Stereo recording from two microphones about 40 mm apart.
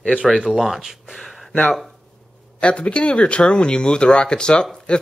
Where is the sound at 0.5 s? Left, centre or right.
Centre.